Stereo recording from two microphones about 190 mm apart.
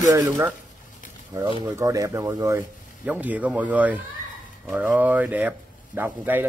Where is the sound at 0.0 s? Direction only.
15° right (ahead or behind).